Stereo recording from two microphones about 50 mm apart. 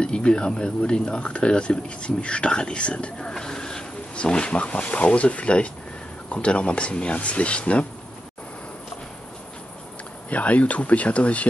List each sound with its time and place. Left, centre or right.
0.0 s speech: centre
10.3 s speech: left